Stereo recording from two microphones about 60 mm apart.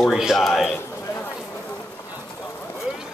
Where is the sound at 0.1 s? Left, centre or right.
Centre.